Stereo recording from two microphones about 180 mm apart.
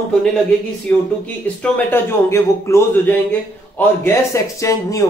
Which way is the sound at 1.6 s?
15° left (ahead or behind).